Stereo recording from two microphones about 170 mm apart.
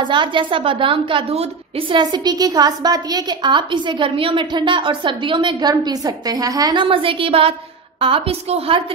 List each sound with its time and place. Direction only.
0.0 s a woman's voice: 30° right (ahead or behind)